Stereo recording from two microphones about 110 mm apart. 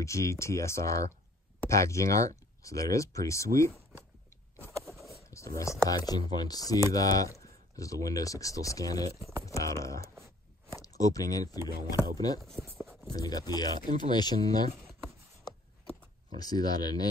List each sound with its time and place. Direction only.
0.0 s speech: 30° left (ahead or behind)
4.6 s a sound: 25° right (ahead or behind)
5.3 s speech: 30° left (ahead or behind)
12.4 s speech: centre (ahead or behind)
12.6 s a sound: 25° right (ahead or behind)
13.1 s speech: 35° left (ahead or behind)
16.3 s speech: 35° left (ahead or behind)